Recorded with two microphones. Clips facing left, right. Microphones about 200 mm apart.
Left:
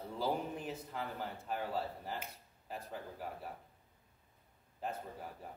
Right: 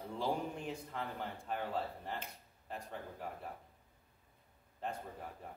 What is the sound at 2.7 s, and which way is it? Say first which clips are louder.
Speech: left 1 dB; 5° left (ahead or behind).